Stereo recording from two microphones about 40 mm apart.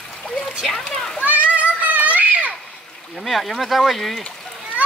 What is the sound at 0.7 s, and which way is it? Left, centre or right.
Speech, centre.